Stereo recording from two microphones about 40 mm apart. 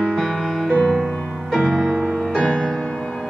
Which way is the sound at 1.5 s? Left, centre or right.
Centre.